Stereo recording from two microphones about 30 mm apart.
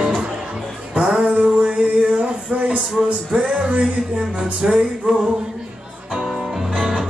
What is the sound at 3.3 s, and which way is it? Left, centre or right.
Music, right.